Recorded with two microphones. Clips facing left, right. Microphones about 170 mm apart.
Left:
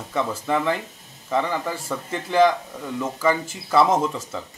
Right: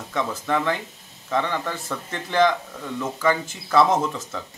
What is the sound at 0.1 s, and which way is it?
Speech, 5° left (ahead or behind).